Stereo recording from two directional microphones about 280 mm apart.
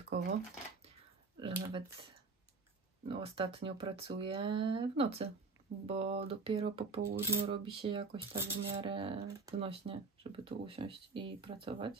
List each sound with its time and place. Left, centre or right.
0.1 s speech: right
1.4 s speech: centre
3.1 s speech: centre